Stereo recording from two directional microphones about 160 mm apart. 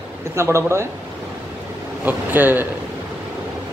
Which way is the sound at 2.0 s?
10° right (ahead or behind).